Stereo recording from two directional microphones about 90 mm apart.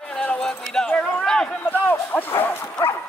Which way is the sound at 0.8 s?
20° left (ahead or behind).